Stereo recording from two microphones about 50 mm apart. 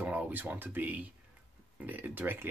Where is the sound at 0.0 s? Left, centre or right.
Right.